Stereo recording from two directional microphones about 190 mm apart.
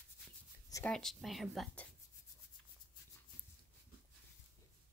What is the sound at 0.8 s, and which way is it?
Speech, centre (ahead or behind).